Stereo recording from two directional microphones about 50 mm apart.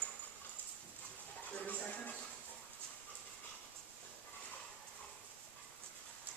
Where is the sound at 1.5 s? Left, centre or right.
Left.